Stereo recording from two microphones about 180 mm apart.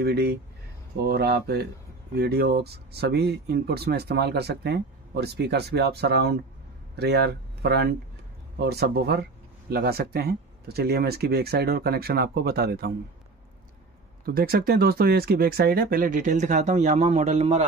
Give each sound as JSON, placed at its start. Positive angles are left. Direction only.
{"t": 0.0, "sound": "speech", "side_deg": -65}
{"t": 14.2, "sound": "speech", "side_deg": -55}